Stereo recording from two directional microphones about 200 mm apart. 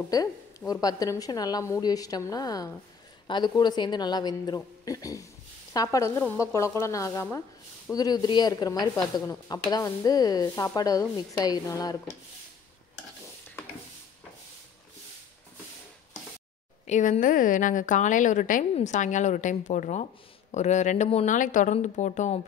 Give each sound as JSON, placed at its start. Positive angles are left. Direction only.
{"t": 0.1, "sound": "speech", "side_deg": 20}
{"t": 16.8, "sound": "a woman's voice", "side_deg": 35}